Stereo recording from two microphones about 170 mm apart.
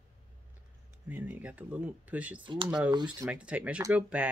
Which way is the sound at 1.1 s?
10° right (ahead or behind).